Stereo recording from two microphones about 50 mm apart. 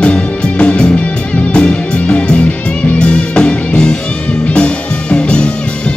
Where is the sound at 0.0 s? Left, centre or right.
Left.